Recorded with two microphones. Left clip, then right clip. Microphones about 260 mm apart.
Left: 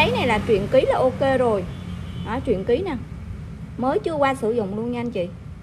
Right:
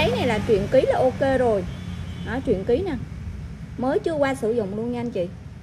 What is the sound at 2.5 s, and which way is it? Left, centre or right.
Speech, centre.